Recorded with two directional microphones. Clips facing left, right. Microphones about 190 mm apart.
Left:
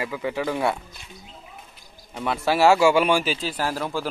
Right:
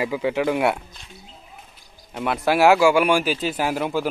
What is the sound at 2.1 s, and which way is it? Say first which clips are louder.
A man's voice: right 2 dB; 10° right (ahead or behind).